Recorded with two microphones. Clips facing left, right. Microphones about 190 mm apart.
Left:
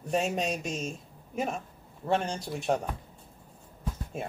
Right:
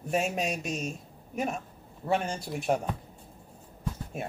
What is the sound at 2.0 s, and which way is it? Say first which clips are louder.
Speech: even; 5° right (ahead or behind).